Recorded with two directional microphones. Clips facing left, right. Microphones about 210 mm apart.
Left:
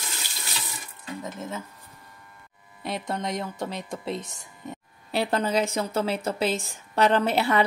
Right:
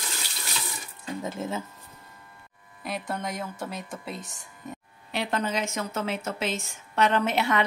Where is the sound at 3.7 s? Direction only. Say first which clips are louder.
Left 5 dB; centre (ahead or behind).